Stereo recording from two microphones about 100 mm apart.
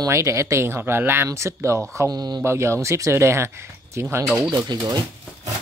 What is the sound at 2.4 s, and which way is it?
Speech, 25° right (ahead or behind).